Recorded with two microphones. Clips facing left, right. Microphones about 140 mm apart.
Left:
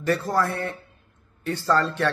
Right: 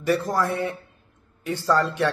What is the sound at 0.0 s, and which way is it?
A man's voice, 15° right (ahead or behind).